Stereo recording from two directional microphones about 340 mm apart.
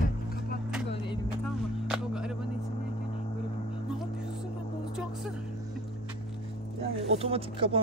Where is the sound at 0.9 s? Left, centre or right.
Centre.